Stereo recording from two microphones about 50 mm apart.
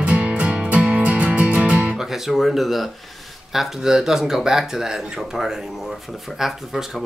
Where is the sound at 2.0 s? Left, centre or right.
Centre.